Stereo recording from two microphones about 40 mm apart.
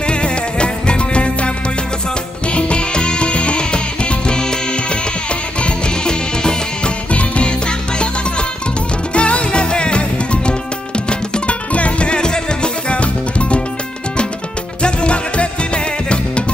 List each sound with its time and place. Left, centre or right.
0.0 s music: left
2.5 s music: left
5.6 s music: left
14.8 s music: left